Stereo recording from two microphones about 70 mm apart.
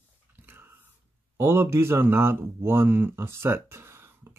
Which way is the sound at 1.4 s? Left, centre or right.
Right.